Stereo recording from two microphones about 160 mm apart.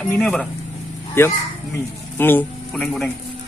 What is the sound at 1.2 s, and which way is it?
A man's voice, 15° left (ahead or behind).